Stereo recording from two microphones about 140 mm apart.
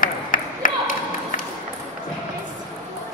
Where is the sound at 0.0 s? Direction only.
80° left.